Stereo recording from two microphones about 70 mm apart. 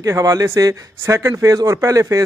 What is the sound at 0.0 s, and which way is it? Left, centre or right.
Speech, right.